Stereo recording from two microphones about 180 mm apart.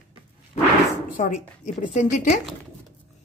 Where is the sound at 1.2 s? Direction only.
45° left (ahead or behind).